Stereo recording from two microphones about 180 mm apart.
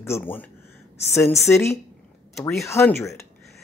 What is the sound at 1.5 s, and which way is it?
Speech, 15° left (ahead or behind).